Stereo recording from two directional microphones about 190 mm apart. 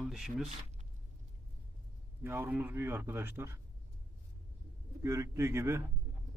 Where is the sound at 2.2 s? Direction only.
10° right (ahead or behind).